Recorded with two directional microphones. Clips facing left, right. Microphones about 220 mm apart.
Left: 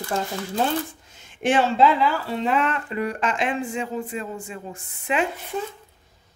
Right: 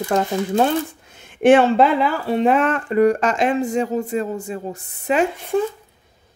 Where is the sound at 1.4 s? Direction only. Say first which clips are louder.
Right 6 dB; 55° right (ahead or behind); by 5.2 s 40° right (ahead or behind).